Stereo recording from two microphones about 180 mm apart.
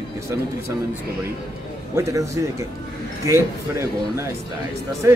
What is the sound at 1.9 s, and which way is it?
Speech, 15° right (ahead or behind).